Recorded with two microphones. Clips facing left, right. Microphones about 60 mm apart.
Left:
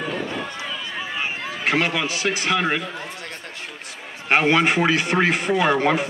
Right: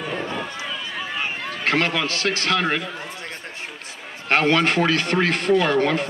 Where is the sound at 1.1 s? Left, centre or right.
Centre.